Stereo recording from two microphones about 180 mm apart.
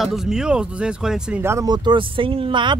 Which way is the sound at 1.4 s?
20° right (ahead or behind).